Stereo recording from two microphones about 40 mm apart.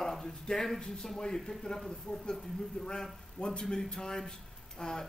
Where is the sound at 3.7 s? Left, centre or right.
Centre.